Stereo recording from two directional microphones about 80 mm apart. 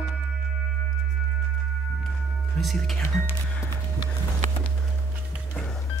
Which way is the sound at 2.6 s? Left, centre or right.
Centre.